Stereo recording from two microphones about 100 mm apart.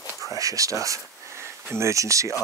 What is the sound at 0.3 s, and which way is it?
Speech, 35° right (ahead or behind).